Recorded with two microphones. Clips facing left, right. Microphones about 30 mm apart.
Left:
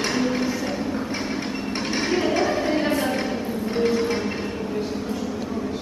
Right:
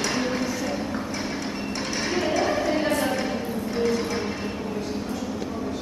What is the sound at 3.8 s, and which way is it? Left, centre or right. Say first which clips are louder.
Music: left 3 dB; left.